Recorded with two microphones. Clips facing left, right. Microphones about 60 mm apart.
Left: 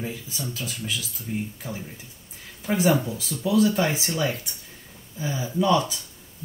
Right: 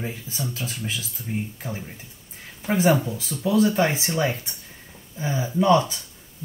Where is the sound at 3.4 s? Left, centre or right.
Right.